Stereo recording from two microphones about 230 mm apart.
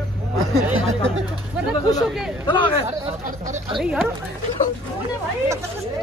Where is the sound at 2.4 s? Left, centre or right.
Left.